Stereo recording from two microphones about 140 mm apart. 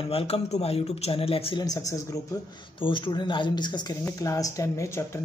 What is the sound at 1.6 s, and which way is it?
Speech, 25° left (ahead or behind).